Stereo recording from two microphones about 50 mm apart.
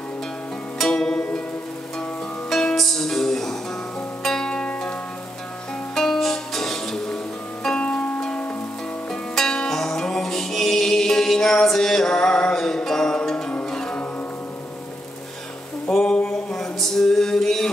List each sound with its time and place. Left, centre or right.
0.7 s music: centre
2.5 s music: centre
5.9 s music: centre
7.8 s music: left
15.9 s a sound: centre